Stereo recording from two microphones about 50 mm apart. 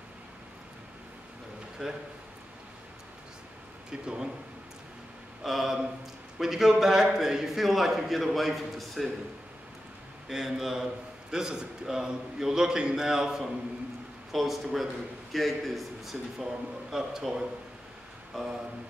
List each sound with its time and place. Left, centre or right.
1.8 s a man's voice: centre
3.9 s a man's voice: centre
5.4 s a man's voice: centre
10.2 s a man's voice: centre
16.9 s a man's voice: centre
18.3 s a sound: centre